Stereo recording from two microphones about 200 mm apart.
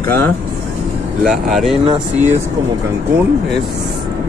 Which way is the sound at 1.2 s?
Centre (ahead or behind).